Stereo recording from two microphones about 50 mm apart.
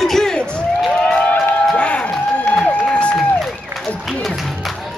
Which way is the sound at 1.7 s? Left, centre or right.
Left.